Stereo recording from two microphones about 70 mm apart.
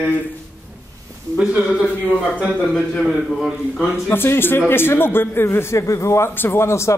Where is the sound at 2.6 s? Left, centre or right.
Centre.